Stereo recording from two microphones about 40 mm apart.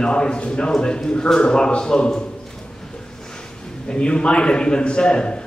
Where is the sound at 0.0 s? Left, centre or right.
Left.